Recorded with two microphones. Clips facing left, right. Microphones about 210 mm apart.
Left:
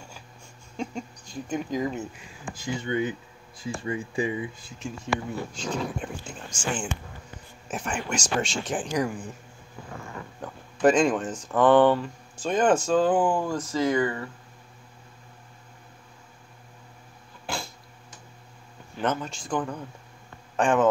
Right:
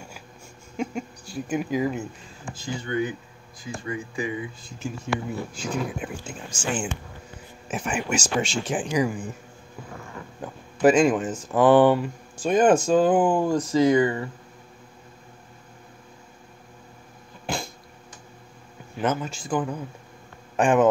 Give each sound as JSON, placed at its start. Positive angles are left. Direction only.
{"t": 0.7, "sound": "speech", "side_deg": -10}
{"t": 2.5, "sound": "speech", "side_deg": 20}
{"t": 4.6, "sound": "speech", "side_deg": 0}
{"t": 7.6, "sound": "speech", "side_deg": -5}
{"t": 10.4, "sound": "speech", "side_deg": -5}
{"t": 18.9, "sound": "speech", "side_deg": -5}